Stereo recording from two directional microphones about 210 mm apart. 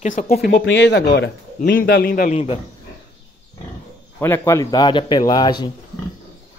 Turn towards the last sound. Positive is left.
turn(degrees=20)  # may be behind; listen again after turning